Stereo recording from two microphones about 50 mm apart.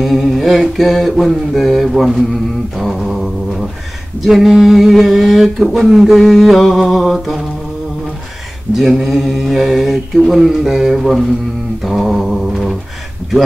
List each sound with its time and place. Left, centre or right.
0.0 s speech: centre
2.8 s mantra: centre
4.2 s speech: centre
8.7 s speech: centre